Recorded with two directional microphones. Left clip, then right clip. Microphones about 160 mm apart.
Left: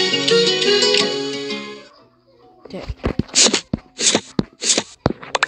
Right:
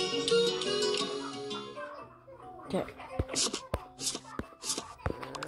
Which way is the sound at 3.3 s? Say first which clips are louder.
Left 18 dB; 25° left (ahead or behind).